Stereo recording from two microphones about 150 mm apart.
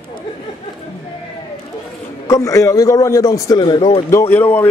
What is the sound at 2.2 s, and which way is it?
A man's voice, 20° left (ahead or behind).